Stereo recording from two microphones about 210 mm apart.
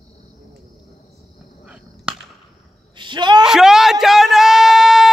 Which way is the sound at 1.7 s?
5° right (ahead or behind).